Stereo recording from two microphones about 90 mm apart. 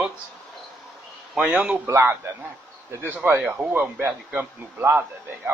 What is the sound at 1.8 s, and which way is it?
Speech, 30° right (ahead or behind).